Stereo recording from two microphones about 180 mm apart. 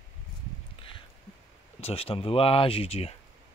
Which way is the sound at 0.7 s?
30° left (ahead or behind).